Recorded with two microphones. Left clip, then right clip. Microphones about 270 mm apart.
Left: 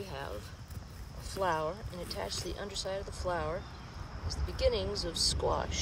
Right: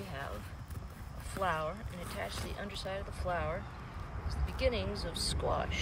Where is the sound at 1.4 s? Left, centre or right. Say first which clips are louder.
Left 2 dB; centre.